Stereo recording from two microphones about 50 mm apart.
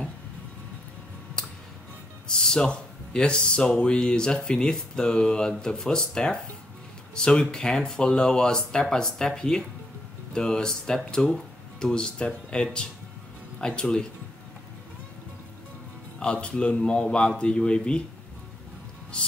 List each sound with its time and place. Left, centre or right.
2.2 s speech: centre
16.2 s speech: left